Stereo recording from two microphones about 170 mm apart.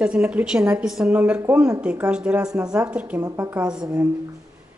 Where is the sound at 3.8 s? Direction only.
20° right (ahead or behind).